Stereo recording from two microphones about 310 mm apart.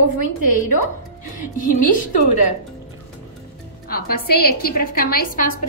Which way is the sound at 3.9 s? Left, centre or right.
Left.